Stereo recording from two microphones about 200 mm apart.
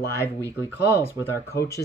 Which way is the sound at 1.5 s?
15° left (ahead or behind).